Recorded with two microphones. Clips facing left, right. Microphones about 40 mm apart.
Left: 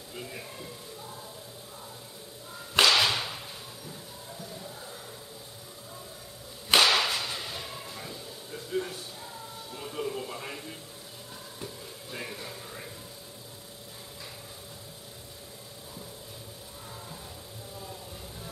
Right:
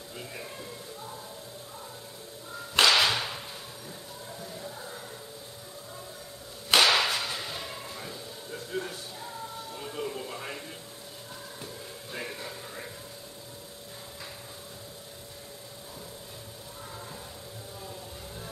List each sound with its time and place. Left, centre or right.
0.1 s speech: centre
2.7 s whip: centre
4.4 s music: centre
6.7 s whip: centre
9.8 s music: centre
11.6 s music: centre